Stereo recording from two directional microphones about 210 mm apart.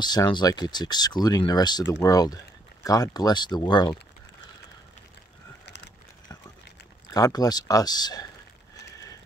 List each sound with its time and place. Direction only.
0.0 s speech: 20° left (ahead or behind)
7.2 s speech: 15° left (ahead or behind)